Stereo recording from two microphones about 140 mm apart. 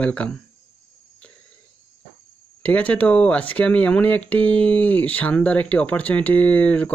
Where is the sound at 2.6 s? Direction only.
10° left (ahead or behind).